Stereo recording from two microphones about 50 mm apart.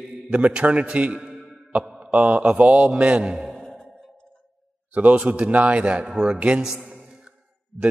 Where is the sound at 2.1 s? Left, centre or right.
Right.